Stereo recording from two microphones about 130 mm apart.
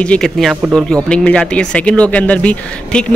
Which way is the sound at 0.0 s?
5° left (ahead or behind).